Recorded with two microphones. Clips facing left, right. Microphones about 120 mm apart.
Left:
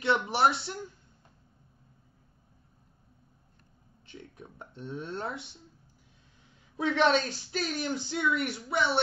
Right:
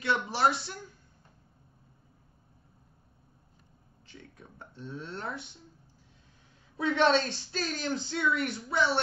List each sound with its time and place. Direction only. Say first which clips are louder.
0.0 s speech: left 2 dB; 20° left (ahead or behind)
4.1 s speech: left 4 dB; 20° left (ahead or behind)
7.0 s speech: even; 10° left (ahead or behind)